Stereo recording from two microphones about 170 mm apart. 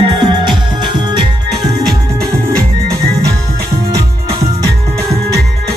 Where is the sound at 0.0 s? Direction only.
25° right (ahead or behind).